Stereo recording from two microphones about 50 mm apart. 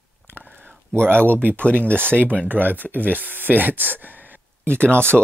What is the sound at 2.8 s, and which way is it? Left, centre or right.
Speech, right.